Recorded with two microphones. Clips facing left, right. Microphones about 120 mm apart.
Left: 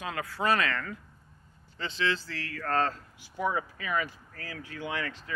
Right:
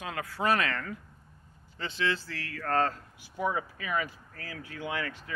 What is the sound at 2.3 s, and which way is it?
Speech, 30° left (ahead or behind).